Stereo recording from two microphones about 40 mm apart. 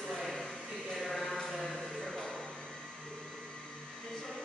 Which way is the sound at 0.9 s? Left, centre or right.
Centre.